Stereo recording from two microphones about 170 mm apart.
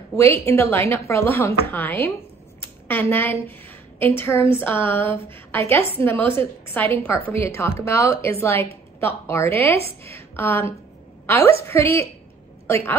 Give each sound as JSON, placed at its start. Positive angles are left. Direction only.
{"t": 0.1, "sound": "a woman's voice", "side_deg": 15}